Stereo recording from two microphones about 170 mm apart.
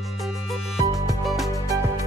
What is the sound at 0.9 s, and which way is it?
Music, 20° right (ahead or behind).